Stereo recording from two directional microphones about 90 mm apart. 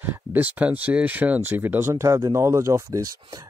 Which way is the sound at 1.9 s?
35° right (ahead or behind).